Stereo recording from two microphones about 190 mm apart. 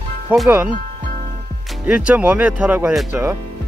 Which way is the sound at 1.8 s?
5° right (ahead or behind).